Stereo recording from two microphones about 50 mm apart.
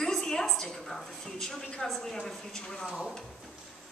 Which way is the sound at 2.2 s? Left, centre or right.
Centre.